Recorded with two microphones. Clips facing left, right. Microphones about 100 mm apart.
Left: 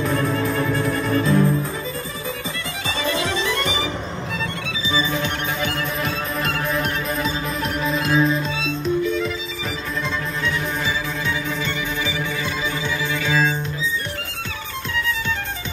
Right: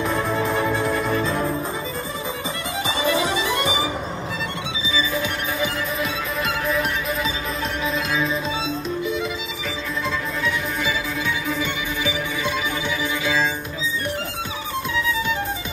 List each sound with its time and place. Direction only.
0.0 s music: 20° right (ahead or behind)
3.0 s music: 15° right (ahead or behind)
7.8 s music: centre (ahead or behind)